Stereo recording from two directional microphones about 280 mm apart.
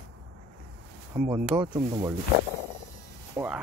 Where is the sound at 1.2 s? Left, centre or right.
Centre.